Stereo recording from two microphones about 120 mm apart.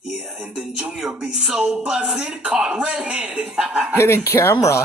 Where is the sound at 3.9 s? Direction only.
20° left (ahead or behind).